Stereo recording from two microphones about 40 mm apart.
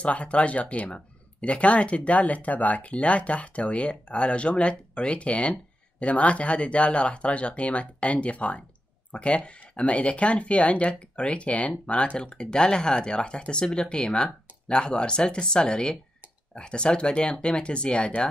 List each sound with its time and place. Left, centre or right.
0.0 s speech: left